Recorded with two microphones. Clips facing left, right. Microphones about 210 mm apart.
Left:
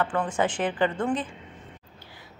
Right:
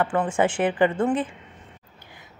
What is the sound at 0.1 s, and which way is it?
Speech, 25° right (ahead or behind).